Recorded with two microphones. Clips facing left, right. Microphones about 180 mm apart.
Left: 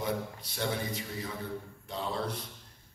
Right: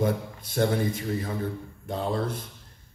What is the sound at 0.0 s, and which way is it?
A man's voice, 50° right (ahead or behind).